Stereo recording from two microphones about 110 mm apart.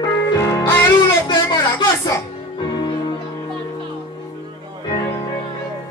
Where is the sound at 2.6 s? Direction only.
45° left (ahead or behind).